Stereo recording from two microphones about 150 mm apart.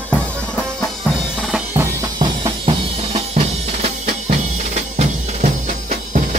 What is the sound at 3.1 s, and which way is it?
Drum, 45° right (ahead or behind).